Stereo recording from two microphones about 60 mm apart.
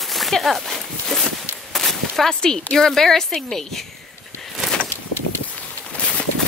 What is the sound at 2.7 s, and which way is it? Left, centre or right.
A woman's voice, centre.